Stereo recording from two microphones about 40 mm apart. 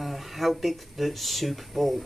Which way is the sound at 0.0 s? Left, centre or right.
Centre.